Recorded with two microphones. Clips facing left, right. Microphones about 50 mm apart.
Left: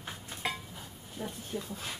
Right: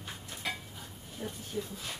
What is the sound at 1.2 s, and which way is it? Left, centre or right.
Speech, centre.